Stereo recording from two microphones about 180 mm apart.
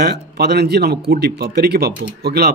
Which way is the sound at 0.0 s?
65° right (ahead or behind).